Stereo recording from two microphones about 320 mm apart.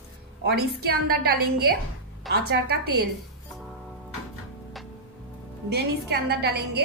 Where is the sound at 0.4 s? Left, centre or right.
Right.